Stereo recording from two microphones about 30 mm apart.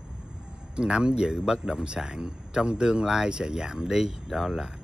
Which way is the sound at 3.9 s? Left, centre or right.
Centre.